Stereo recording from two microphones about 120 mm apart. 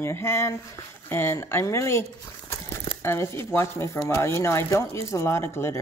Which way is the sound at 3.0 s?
20° left (ahead or behind).